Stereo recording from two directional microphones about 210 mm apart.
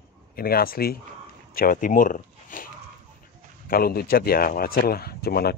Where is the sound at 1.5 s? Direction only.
45° left (ahead or behind).